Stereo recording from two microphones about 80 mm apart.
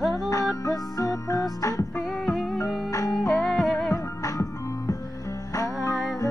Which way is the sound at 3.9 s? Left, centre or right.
Left.